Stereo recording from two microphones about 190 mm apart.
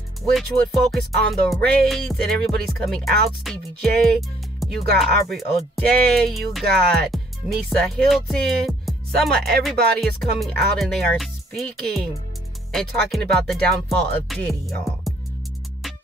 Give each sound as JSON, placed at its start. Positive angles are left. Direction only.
{"t": 0.3, "sound": "music", "side_deg": 0}
{"t": 6.6, "sound": "speech", "side_deg": -55}
{"t": 7.1, "sound": "music", "side_deg": 0}